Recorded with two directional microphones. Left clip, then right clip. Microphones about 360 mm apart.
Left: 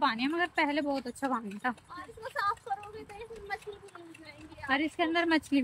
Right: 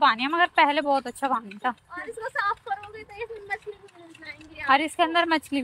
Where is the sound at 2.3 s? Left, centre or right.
Right.